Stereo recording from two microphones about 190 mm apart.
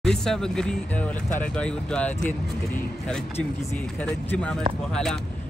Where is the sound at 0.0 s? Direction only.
5° left (ahead or behind).